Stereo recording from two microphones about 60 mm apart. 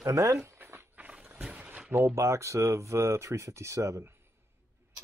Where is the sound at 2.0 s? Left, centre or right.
Right.